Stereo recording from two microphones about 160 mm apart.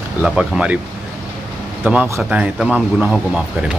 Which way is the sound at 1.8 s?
15° right (ahead or behind).